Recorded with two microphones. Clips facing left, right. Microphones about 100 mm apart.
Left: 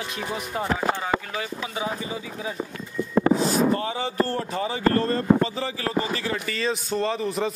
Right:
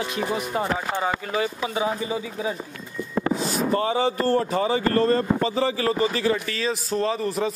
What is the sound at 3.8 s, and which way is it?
Speech, 90° right.